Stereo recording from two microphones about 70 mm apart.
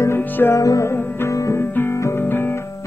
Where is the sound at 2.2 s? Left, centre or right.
Left.